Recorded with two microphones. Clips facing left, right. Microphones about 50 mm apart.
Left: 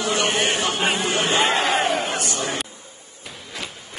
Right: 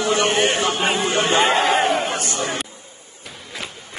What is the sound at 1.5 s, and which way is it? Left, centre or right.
Crowd, centre.